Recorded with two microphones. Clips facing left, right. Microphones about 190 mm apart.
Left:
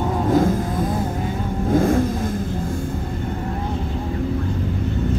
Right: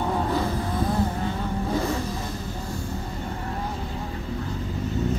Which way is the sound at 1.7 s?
50° left (ahead or behind).